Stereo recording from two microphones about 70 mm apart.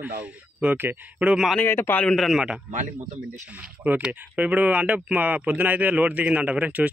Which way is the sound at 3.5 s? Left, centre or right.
Right.